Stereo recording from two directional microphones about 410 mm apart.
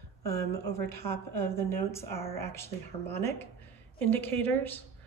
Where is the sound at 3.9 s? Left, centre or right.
Centre.